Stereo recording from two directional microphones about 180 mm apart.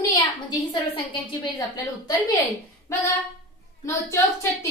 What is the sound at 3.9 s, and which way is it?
Speech, 15° left (ahead or behind).